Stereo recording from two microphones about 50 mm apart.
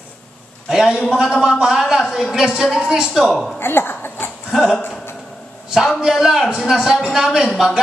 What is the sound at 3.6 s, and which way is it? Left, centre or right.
Laughter, left.